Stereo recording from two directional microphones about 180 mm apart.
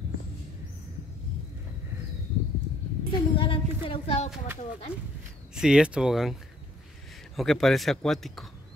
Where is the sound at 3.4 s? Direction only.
30° left (ahead or behind).